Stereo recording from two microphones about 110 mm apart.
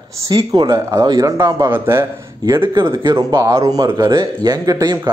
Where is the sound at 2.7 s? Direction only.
40° right (ahead or behind).